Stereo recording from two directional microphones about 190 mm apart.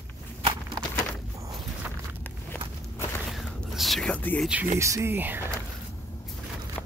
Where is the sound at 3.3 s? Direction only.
Centre (ahead or behind).